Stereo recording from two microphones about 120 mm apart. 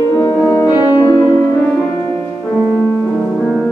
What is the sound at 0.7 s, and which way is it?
Music, 40° left (ahead or behind).